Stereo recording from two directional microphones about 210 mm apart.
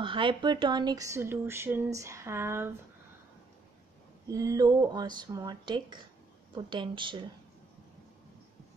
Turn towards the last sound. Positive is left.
turn(degrees=-25)  # may be behind; listen again after turning